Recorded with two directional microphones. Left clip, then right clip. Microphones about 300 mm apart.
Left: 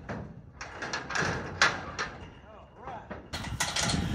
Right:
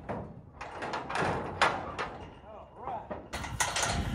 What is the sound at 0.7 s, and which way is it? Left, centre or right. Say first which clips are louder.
Door: left 1 dB; right.